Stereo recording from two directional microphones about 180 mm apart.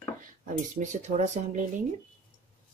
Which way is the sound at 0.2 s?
45° right (ahead or behind).